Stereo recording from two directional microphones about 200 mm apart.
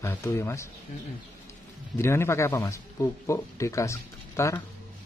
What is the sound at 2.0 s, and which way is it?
Speech, 15° left (ahead or behind).